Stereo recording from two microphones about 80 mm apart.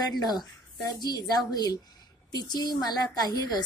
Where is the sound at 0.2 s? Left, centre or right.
Left.